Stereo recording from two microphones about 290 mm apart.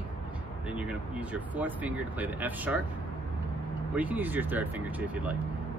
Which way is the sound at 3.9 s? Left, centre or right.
Centre.